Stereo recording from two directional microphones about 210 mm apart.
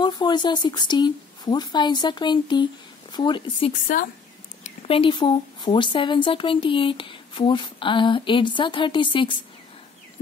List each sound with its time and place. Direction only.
0.0 s speech: 20° left (ahead or behind)
3.8 s a woman's voice: 40° left (ahead or behind)
4.6 s speech: 25° left (ahead or behind)